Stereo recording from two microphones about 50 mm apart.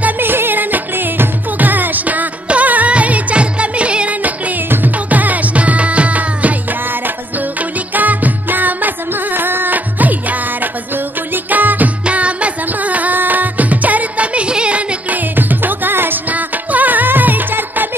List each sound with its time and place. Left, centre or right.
0.2 s music: right
4.6 s music: right
7.9 s music: right
11.5 s music: right
15.0 s music: right